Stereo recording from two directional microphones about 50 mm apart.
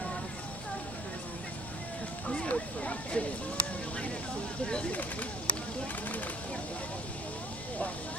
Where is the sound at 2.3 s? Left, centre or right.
Left.